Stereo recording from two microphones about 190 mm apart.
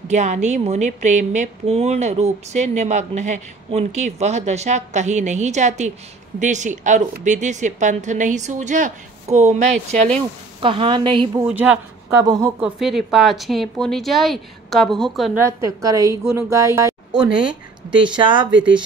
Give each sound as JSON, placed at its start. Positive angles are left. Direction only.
{"t": 0.1, "sound": "a woman's voice", "side_deg": -40}
{"t": 11.4, "sound": "a woman's voice", "side_deg": -5}
{"t": 12.2, "sound": "a woman's voice", "side_deg": -15}
{"t": 12.5, "sound": "a woman's voice", "side_deg": -5}
{"t": 15.3, "sound": "a woman's voice", "side_deg": -15}